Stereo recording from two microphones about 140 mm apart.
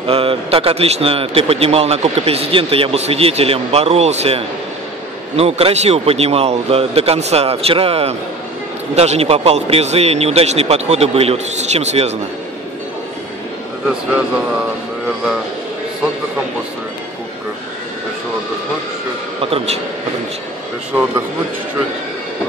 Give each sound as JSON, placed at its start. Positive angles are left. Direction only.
{"t": 0.0, "sound": "a man's voice", "side_deg": -40}
{"t": 19.5, "sound": "a man's voice", "side_deg": -50}